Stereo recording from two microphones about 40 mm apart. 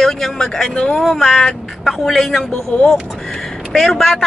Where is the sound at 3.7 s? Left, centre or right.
Centre.